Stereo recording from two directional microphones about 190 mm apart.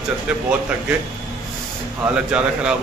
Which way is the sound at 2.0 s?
5° right (ahead or behind).